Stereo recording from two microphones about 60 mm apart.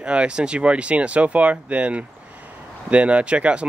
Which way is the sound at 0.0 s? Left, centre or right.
Centre.